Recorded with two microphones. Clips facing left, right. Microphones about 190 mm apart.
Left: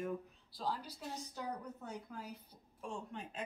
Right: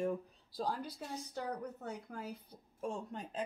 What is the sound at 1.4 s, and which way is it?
Speech, 60° right (ahead or behind).